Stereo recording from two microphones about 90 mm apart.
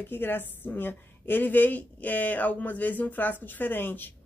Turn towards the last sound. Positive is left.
turn(degrees=20)  # may be behind; listen again after turning